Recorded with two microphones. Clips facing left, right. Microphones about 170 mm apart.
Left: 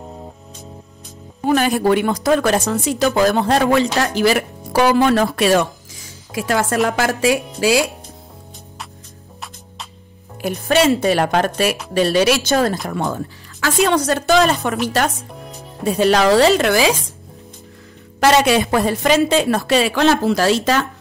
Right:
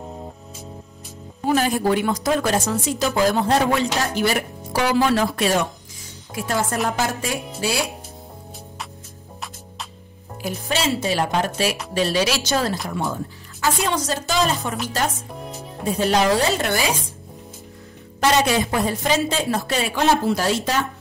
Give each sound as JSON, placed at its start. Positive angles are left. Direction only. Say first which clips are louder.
{"t": 1.4, "sound": "speech", "louder": "left 4 dB", "side_deg": 70}
{"t": 4.0, "sound": "a woman's voice", "louder": "left 5 dB", "side_deg": 90}
{"t": 10.4, "sound": "speech", "louder": "left 8 dB", "side_deg": 60}
{"t": 15.4, "sound": "music", "louder": "right 2 dB", "side_deg": 0}
{"t": 16.0, "sound": "a woman's voice", "louder": "left 6 dB", "side_deg": 90}
{"t": 18.2, "sound": "a woman's voice", "louder": "left 5 dB", "side_deg": 85}